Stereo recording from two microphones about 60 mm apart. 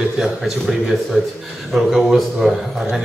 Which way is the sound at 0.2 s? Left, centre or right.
Centre.